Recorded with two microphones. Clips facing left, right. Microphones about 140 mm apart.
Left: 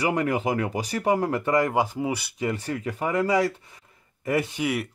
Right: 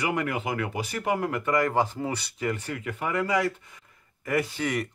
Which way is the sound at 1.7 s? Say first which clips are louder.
Left 2 dB; 10° left (ahead or behind).